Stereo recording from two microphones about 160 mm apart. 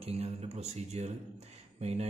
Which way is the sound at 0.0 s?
40° right (ahead or behind).